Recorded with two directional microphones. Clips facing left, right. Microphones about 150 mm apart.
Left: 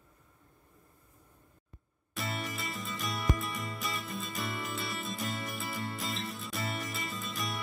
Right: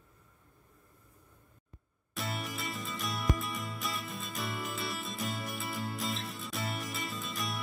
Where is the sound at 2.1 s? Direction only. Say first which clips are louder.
Left 1 dB; centre (ahead or behind).